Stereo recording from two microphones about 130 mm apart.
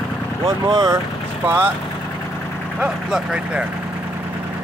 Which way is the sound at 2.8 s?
5° right (ahead or behind).